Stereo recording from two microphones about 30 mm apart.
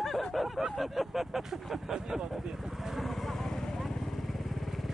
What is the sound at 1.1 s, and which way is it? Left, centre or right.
Speech, centre.